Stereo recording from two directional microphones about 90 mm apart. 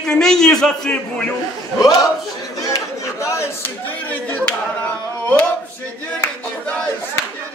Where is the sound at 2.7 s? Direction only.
35° left (ahead or behind).